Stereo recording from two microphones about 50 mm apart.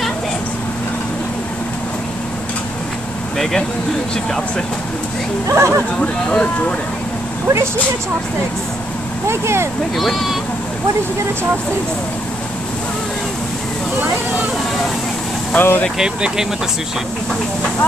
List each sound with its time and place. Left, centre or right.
5.5 s speech: right
5.9 s speech: centre
7.4 s speech: right
9.3 s speech: right
9.9 s speech: centre
15.5 s speech: left
16.0 s speech: centre